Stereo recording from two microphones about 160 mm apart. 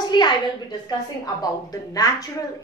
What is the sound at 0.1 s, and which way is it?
A woman's voice, 25° left (ahead or behind).